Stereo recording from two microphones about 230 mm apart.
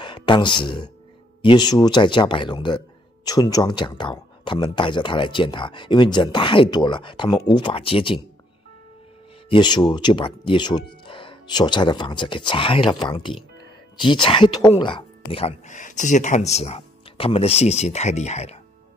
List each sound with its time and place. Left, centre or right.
0.0 s speech: centre
9.5 s speech: centre